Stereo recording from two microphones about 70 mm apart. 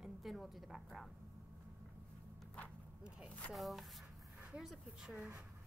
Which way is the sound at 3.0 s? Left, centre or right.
Centre.